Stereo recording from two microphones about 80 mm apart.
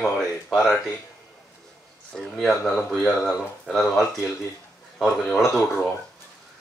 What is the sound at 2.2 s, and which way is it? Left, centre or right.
Speech, centre.